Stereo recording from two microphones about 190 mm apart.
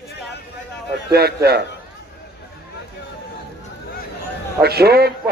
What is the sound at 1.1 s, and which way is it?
Speech, 55° right (ahead or behind).